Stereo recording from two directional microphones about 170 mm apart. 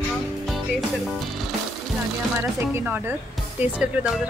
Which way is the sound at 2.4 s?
15° right (ahead or behind).